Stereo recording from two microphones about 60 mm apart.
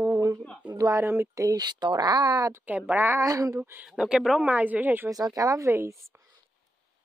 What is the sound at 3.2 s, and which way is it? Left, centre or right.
Speech, right.